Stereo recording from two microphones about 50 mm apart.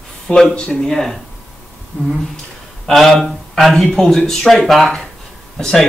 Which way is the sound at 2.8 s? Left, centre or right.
Centre.